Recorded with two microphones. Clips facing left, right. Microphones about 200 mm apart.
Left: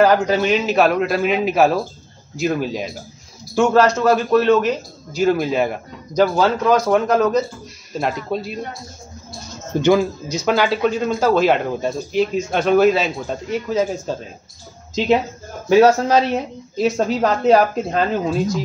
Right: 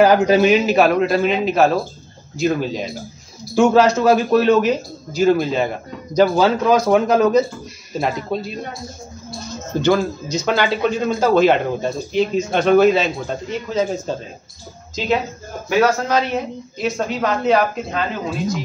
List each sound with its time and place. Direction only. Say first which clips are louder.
0.0 s a man's voice: right 2 dB; 5° right (ahead or behind)
9.8 s speech: left 2 dB; 15° left (ahead or behind)
10.3 s a man's voice: left 1 dB; 5° left (ahead or behind)
15.7 s speech: left 4 dB; 30° left (ahead or behind)